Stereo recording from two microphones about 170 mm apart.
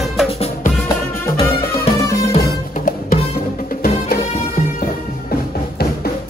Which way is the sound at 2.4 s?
55° left (ahead or behind).